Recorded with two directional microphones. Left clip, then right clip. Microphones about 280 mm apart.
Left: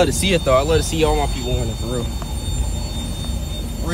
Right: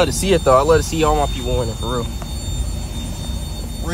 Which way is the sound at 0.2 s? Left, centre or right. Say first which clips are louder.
Right 3 dB; centre.